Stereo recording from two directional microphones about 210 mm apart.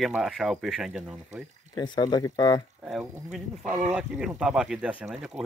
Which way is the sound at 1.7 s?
20° left (ahead or behind).